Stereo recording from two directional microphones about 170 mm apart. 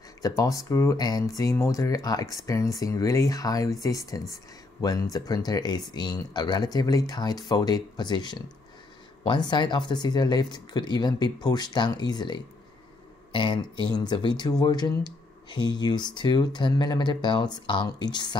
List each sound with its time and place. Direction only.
0.4 s speech: 20° left (ahead or behind)